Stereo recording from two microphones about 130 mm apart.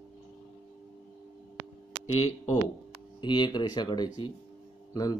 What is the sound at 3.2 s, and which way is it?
Speech, 35° left (ahead or behind).